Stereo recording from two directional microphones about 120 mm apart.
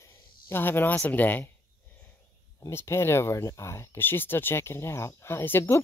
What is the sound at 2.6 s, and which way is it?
Speech, 20° left (ahead or behind).